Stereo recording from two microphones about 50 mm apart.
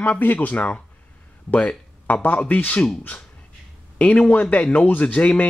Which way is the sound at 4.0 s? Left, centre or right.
Left.